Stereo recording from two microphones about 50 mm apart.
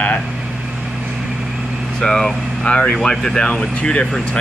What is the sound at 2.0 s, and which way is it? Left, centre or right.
Speech, centre.